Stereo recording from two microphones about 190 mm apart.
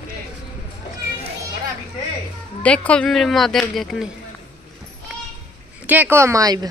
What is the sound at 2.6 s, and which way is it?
Speech, 5° left (ahead or behind).